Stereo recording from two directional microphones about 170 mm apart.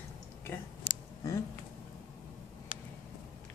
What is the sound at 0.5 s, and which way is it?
Speech, 15° left (ahead or behind).